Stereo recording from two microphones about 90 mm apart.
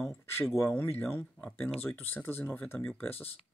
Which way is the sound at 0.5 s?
25° left (ahead or behind).